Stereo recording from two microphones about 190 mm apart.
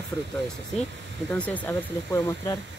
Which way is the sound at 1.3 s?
5° left (ahead or behind).